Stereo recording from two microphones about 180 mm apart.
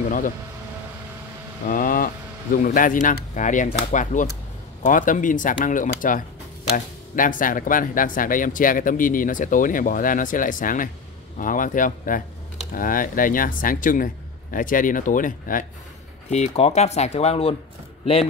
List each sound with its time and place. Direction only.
1.7 s speech: 50° left (ahead or behind)
16.3 s speech: 35° left (ahead or behind)